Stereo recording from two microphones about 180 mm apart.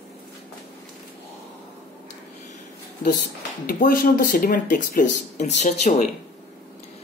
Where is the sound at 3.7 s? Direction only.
55° left (ahead or behind).